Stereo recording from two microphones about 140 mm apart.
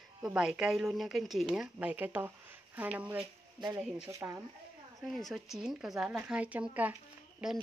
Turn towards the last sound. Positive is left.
turn(degrees=-5)  # may be behind; listen again after turning